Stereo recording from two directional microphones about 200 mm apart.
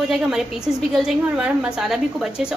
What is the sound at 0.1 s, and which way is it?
A woman's voice, centre (ahead or behind).